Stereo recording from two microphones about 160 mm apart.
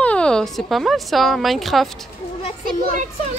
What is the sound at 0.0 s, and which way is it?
A woman's voice, 5° left (ahead or behind).